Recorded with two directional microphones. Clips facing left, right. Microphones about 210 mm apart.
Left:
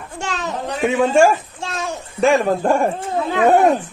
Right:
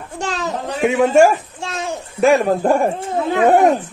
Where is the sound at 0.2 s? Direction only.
35° right (ahead or behind).